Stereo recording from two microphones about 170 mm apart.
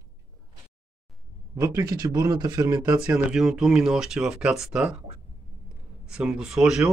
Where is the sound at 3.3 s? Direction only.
Centre (ahead or behind).